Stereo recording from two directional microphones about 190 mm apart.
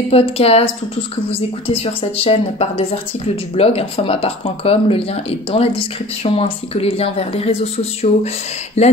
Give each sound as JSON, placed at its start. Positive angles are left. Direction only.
{"t": 0.1, "sound": "speech", "side_deg": 30}